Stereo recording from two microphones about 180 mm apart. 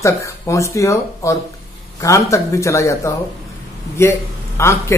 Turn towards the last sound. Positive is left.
turn(degrees=15)  # may be behind; listen again after turning